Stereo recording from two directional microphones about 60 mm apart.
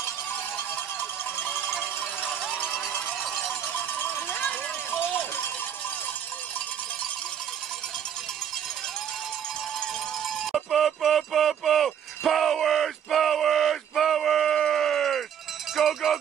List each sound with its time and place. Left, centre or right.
4.0 s cowbell: left
10.4 s a sound: centre
15.7 s music: centre